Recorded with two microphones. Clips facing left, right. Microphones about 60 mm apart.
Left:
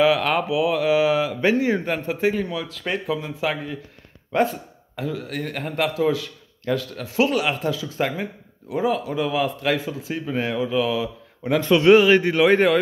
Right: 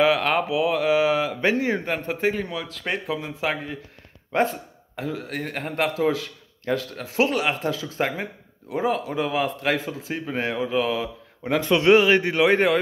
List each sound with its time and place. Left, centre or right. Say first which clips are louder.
0.0 s speech: left 1 dB; right
2.8 s speech: left 2 dB; centre
4.9 s speech: left 1 dB; right
11.4 s speech: left 3 dB; right